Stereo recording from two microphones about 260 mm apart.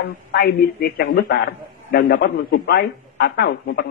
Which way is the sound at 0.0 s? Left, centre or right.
Left.